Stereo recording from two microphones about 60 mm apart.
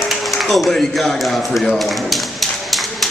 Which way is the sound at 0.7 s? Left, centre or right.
Centre.